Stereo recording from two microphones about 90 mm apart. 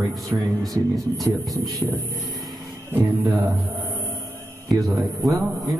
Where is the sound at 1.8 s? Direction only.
10° right (ahead or behind).